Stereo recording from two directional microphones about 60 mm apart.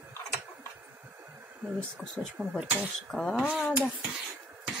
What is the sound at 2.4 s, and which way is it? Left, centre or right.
Speech, right.